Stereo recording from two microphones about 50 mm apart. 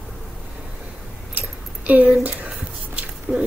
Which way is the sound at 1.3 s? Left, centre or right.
Right.